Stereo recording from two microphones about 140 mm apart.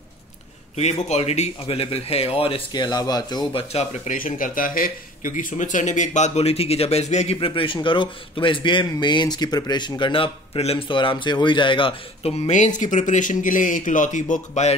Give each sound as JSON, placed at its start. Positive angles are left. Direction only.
{"t": 1.0, "sound": "speech", "side_deg": 50}
{"t": 2.7, "sound": "speech", "side_deg": 30}
{"t": 3.7, "sound": "speech", "side_deg": 70}
{"t": 7.3, "sound": "speech", "side_deg": 40}